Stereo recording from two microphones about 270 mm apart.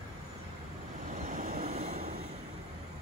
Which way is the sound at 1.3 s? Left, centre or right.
Right.